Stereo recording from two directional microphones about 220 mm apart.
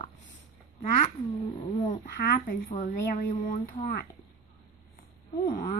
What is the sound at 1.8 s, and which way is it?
A woman's voice, 40° left (ahead or behind).